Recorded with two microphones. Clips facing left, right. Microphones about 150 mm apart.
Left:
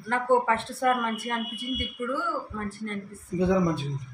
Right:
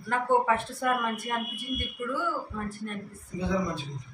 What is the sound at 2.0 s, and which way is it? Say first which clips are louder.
Speech: left 1 dB; centre (ahead or behind).